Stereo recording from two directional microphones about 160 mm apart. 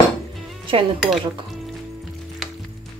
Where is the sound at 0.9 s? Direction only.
5° right (ahead or behind).